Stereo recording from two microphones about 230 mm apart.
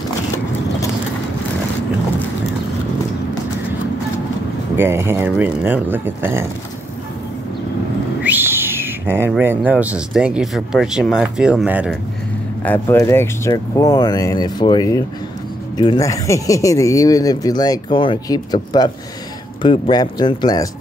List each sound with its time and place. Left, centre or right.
4.7 s speech: centre
8.2 s speech: centre
12.6 s speech: centre